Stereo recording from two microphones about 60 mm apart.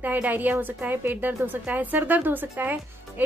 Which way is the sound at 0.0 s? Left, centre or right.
Right.